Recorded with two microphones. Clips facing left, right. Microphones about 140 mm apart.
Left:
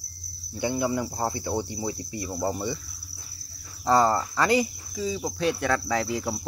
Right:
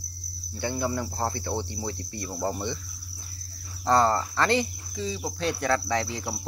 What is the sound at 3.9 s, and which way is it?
Cricket, 10° left (ahead or behind).